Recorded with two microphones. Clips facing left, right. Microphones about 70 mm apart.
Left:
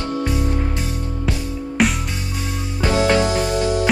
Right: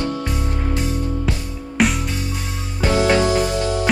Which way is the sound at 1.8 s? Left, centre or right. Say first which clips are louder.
Even; centre.